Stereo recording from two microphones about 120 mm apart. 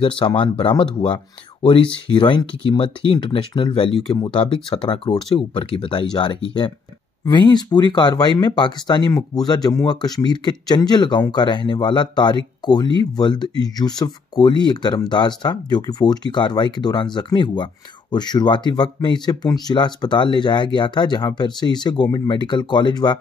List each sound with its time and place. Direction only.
0.4 s speech: 45° left (ahead or behind)
7.2 s speech: 35° left (ahead or behind)